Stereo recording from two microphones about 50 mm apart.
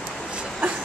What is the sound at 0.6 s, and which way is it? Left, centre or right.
Train, right.